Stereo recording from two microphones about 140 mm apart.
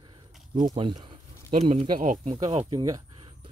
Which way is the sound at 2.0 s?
65° right (ahead or behind).